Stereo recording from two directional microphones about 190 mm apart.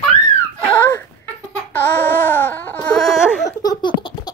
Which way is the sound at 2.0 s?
10° left (ahead or behind).